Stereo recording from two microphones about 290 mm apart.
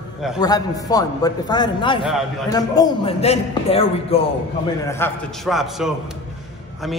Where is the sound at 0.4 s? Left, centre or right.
Centre.